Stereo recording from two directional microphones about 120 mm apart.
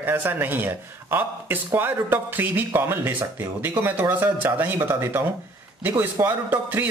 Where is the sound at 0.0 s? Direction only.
15° right (ahead or behind).